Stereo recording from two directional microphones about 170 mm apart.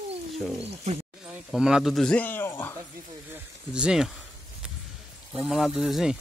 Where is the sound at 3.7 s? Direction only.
5° right (ahead or behind).